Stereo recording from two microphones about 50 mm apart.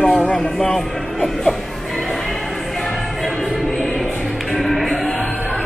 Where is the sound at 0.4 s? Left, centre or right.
Centre.